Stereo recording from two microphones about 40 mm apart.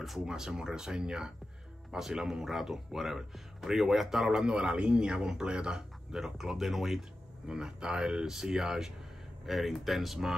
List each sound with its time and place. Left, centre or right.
0.2 s speech: centre
7.4 s speech: centre